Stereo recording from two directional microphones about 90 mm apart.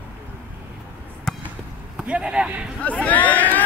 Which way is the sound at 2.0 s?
10° right (ahead or behind).